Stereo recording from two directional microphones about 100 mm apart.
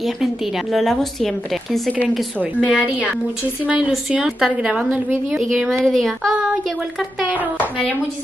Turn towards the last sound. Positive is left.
turn(degrees=5)  # may be behind; listen again after turning